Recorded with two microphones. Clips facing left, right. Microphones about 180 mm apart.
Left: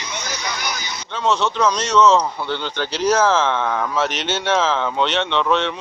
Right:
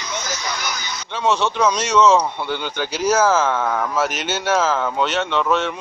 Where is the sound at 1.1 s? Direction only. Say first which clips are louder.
Even; 10° right (ahead or behind).